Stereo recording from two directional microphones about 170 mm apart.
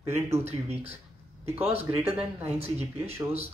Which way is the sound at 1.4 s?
35° right (ahead or behind).